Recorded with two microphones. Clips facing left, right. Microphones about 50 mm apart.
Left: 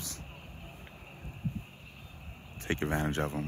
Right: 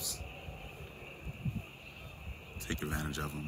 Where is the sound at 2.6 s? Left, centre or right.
Left.